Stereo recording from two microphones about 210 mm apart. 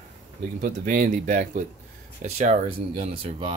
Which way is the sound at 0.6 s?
40° right (ahead or behind).